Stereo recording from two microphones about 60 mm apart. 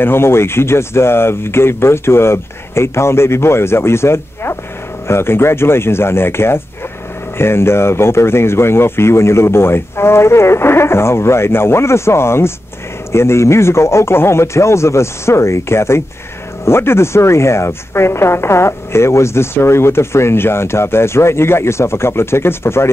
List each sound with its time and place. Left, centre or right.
0.0 s speech: left